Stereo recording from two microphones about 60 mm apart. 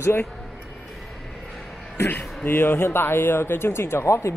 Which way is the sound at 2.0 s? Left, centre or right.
Left.